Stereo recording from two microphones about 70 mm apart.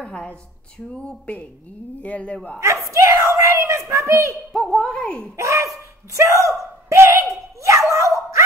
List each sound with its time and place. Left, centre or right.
0.0 s a sound: centre
1.0 s speech: centre
2.6 s a child's voice: right
4.5 s a woman's voice: centre
5.4 s a child's voice: right
6.1 s dog: right